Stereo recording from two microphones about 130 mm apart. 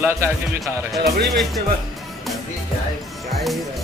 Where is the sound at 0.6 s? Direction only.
Centre (ahead or behind).